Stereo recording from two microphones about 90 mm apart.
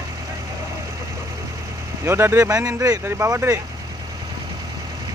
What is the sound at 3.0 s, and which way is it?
Speech, 30° right (ahead or behind).